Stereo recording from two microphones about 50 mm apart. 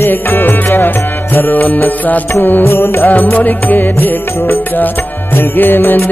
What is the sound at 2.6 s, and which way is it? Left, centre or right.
Music, left.